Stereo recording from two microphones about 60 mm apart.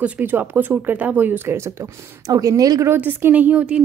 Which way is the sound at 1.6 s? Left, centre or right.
Right.